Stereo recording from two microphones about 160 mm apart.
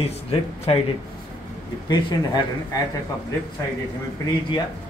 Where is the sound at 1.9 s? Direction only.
30° left (ahead or behind).